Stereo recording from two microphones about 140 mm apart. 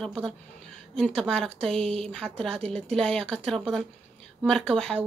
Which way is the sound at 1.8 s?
45° right (ahead or behind).